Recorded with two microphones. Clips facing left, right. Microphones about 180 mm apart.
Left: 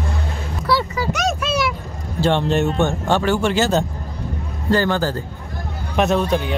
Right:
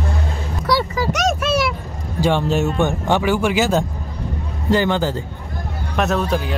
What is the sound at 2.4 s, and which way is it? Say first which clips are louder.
A man's voice: even; 5° right (ahead or behind).